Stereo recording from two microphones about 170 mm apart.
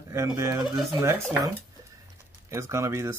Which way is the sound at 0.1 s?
15° right (ahead or behind).